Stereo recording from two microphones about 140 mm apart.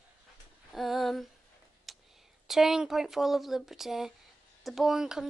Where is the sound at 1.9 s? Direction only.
Centre (ahead or behind).